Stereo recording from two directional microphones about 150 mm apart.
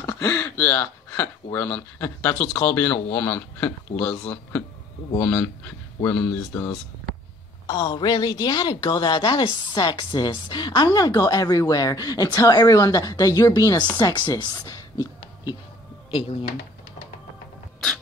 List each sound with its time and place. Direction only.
0.0 s a woman's voice: 20° left (ahead or behind)
16.1 s speech: 40° left (ahead or behind)